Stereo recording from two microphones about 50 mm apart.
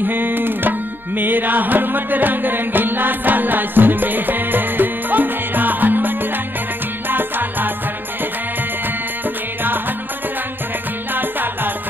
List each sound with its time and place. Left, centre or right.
0.0 s music: right
9.6 s music: right
11.1 s music: right